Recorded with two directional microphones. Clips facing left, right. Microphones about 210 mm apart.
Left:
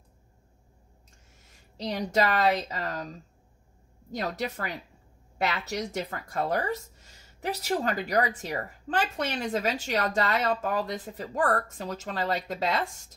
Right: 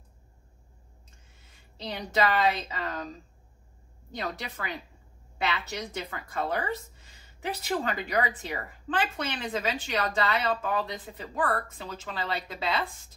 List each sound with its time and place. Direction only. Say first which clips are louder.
1.8 s a woman's voice: left 2 dB; 40° left (ahead or behind)
4.1 s a woman's voice: left 4 dB; 40° left (ahead or behind)